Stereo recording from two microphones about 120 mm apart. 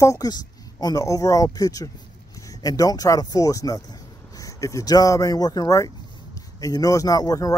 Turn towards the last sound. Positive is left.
turn(degrees=30)  # may be behind; listen again after turning